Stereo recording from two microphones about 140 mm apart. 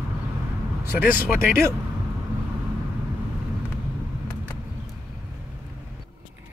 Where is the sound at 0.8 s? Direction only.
15° right (ahead or behind).